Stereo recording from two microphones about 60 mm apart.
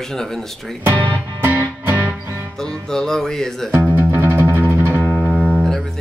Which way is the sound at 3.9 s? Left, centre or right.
Right.